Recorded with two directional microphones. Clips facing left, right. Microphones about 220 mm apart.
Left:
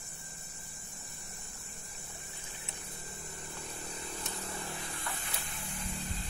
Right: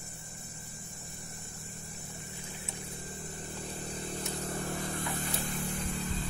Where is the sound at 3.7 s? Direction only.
35° right (ahead or behind).